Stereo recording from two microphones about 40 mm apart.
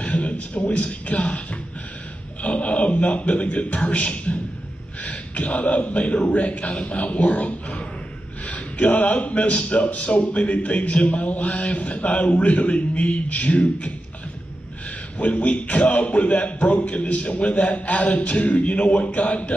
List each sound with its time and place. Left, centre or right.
0.0 s a sound: left
0.6 s speech: left
2.4 s a sound: left
3.0 s speech: left
5.0 s gasp: left
5.9 s speech: left
7.3 s speech: left
8.5 s speech: left
15.2 s speech: left
18.1 s music: left
18.5 s speech: left